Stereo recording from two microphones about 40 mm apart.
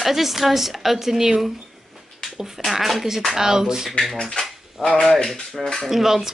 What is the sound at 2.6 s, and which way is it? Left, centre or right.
A woman's voice, centre.